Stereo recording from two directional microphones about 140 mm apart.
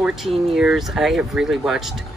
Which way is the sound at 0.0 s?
Centre (ahead or behind).